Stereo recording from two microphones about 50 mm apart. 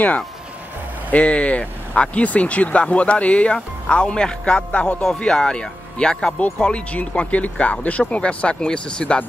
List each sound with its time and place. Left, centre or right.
1.1 s speech: left